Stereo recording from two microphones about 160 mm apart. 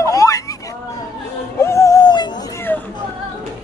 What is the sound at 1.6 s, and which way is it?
Music, 20° left (ahead or behind).